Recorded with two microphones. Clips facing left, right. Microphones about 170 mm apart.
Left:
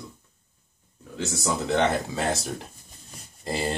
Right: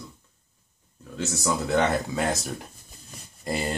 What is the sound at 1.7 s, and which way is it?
Speech, 30° left (ahead or behind).